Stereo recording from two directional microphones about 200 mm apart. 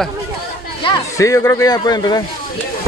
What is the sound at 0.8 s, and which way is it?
Speech, 15° left (ahead or behind).